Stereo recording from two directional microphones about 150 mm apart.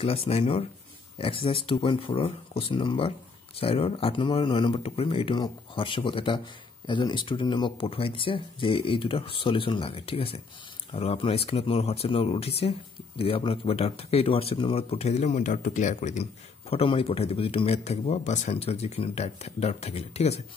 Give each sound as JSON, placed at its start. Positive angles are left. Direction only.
{"t": 0.0, "sound": "speech", "side_deg": 40}